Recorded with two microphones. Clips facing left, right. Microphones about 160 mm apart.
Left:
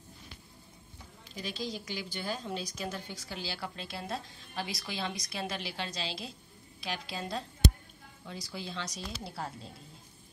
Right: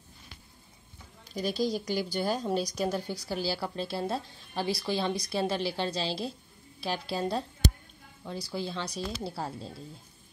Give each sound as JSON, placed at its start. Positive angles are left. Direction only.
{"t": 1.3, "sound": "a woman's voice", "side_deg": -40}